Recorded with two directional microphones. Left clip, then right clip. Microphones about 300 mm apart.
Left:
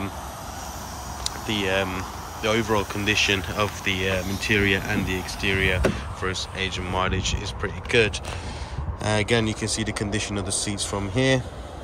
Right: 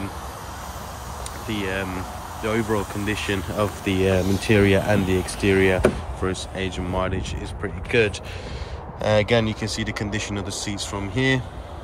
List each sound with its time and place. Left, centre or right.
1.5 s speech: centre
6.2 s speech: centre